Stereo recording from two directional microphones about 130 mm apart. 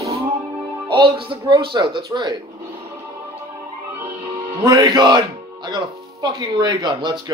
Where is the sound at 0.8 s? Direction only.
40° right (ahead or behind).